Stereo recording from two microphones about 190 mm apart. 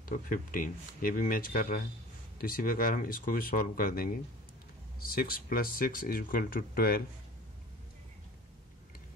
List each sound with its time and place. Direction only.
0.0 s speech: 45° left (ahead or behind)